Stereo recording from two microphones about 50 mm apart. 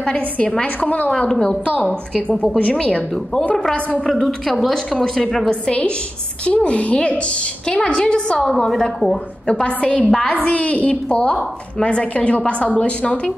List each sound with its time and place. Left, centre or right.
0.7 s a woman's voice: left
1.3 s a woman's voice: centre
1.6 s a woman's voice: left
2.7 s a woman's voice: centre
5.5 s a woman's voice: left
9.5 s a woman's voice: left
10.3 s a woman's voice: left